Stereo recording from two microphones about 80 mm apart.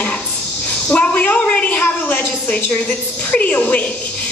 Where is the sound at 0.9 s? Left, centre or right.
Centre.